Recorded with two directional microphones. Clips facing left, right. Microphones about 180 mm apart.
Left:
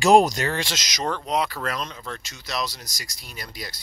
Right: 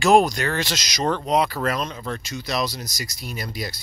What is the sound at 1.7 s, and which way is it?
Speech, 50° right (ahead or behind).